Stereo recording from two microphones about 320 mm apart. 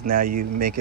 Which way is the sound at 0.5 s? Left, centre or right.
Right.